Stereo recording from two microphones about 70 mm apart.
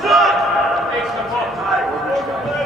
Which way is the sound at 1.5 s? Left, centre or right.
Centre.